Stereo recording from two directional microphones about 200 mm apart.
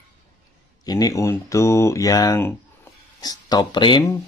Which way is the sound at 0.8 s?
15° left (ahead or behind).